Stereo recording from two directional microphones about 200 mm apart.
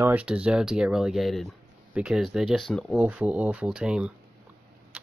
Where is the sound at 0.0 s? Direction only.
5° right (ahead or behind).